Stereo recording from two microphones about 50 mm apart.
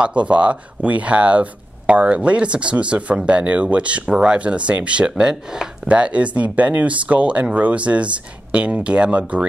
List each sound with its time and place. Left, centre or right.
0.0 s speech: right